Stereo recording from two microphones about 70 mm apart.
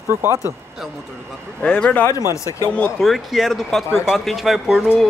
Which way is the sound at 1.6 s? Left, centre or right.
Centre.